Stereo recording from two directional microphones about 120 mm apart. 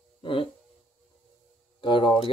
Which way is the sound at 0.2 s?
45° left (ahead or behind).